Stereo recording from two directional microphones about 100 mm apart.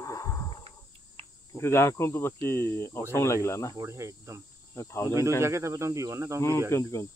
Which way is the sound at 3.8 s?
30° right (ahead or behind).